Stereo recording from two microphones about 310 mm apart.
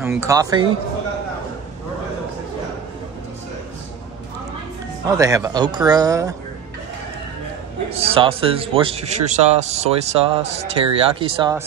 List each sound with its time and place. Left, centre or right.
0.0 s speech: centre
5.1 s speech: centre
7.9 s a man's voice: centre